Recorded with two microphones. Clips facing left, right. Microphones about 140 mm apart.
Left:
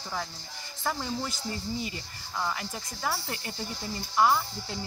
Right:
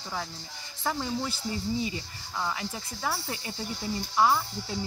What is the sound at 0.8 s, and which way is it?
Speech, 5° right (ahead or behind).